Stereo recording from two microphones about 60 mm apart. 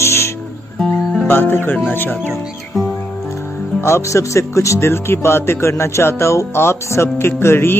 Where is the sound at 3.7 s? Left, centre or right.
Left.